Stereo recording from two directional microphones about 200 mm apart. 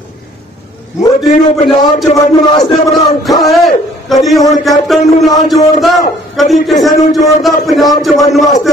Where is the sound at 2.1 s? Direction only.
20° left (ahead or behind).